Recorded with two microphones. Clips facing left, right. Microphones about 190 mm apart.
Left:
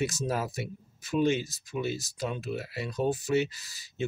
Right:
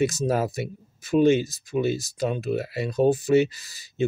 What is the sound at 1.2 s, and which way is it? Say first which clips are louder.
Speech: right 7 dB; 60° right (ahead or behind).